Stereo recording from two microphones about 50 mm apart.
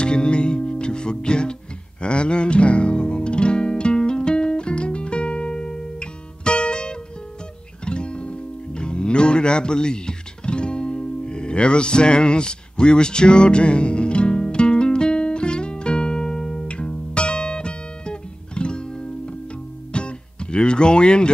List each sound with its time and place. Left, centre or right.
0.0 s music: centre